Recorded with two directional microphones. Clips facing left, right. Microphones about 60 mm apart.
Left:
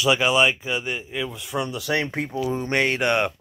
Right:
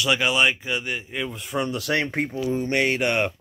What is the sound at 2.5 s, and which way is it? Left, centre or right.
Speech, left.